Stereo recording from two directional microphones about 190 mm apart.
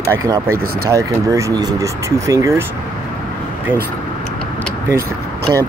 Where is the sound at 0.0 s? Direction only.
15° right (ahead or behind).